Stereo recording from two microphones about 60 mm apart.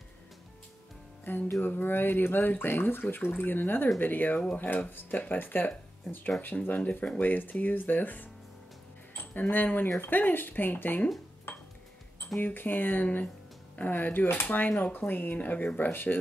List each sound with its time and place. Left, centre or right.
1.3 s speech: left
11.5 s dishes: left
12.4 s speech: left
15.8 s speech: left